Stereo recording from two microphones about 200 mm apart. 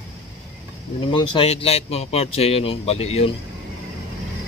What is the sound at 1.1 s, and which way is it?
Speech, 30° left (ahead or behind).